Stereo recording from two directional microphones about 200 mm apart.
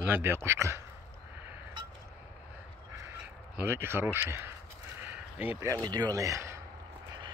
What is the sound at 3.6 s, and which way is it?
Speech, 10° right (ahead or behind).